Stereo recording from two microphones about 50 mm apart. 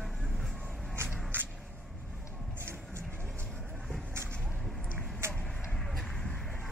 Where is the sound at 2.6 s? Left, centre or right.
Right.